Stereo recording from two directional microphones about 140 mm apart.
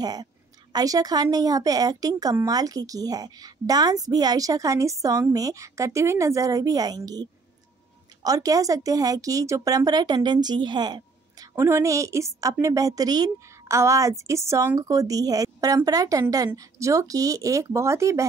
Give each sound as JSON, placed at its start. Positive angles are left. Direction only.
{"t": 0.0, "sound": "speech", "side_deg": -30}
{"t": 11.5, "sound": "speech", "side_deg": -20}